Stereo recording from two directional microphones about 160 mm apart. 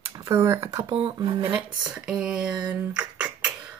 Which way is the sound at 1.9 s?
5° right (ahead or behind).